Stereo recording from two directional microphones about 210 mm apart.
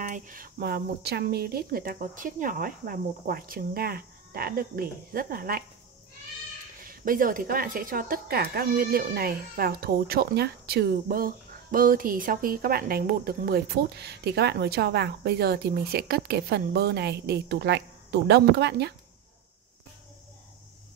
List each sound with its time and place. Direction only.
0.0 s speech: 40° right (ahead or behind)
6.9 s speech: 40° right (ahead or behind)